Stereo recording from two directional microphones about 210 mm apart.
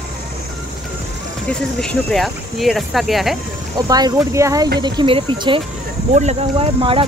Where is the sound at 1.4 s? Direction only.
5° left (ahead or behind).